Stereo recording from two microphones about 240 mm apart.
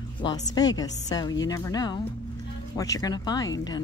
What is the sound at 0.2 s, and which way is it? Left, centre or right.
A woman's voice, centre.